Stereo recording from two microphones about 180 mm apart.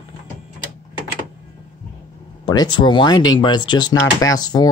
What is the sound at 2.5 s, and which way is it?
Speech, 25° left (ahead or behind).